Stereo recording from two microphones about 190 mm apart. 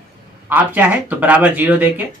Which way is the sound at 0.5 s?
10° right (ahead or behind).